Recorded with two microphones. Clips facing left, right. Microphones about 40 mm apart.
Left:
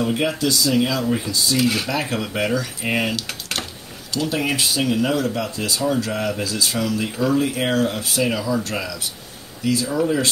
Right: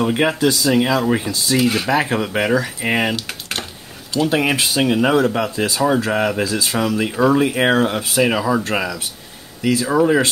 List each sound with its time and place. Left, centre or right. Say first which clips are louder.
0.0 s speech: right 4 dB; right
1.6 s speech: right 3 dB; centre
1.9 s speech: right 6 dB; right
3.3 s computer keyboard: right 1 dB; centre
4.3 s speech: right 3 dB; right
9.8 s speech: right 8 dB; right